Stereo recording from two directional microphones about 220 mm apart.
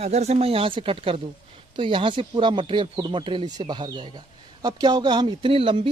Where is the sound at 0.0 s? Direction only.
30° right (ahead or behind).